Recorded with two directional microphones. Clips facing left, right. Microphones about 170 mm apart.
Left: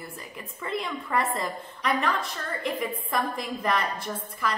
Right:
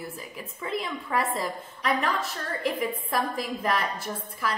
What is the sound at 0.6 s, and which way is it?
A woman's voice, centre (ahead or behind).